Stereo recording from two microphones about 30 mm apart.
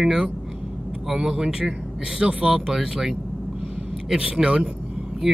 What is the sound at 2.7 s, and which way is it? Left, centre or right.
Speech, right.